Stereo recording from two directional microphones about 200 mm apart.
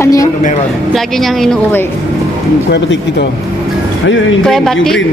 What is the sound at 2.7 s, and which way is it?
Speech, 60° left (ahead or behind).